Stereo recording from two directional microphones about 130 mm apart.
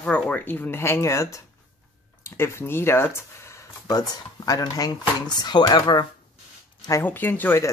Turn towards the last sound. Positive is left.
turn(degrees=15)  # may be behind; listen again after turning